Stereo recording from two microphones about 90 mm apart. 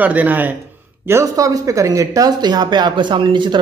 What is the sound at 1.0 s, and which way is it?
A woman's voice, 35° right (ahead or behind).